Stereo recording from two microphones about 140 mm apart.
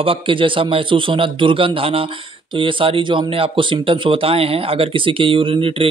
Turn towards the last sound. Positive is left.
turn(degrees=-40)  # may be behind; listen again after turning